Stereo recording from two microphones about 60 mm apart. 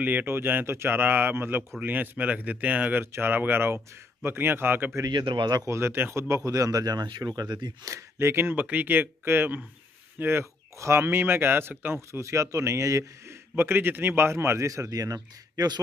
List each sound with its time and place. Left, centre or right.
0.0 s speech: right
1.8 s speech: right
5.7 s speech: right
7.3 s speech: right
8.2 s speech: right
10.8 s speech: right
12.1 s speech: right
13.6 s speech: right
14.7 s speech: right